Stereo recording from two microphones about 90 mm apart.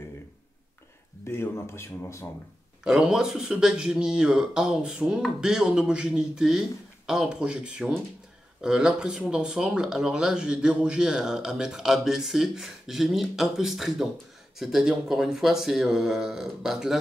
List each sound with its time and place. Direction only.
1.2 s speech: 25° left (ahead or behind)
2.8 s a man's voice: 5° right (ahead or behind)